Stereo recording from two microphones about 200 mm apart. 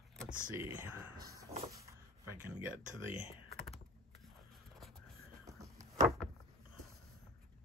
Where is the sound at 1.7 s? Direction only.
15° right (ahead or behind).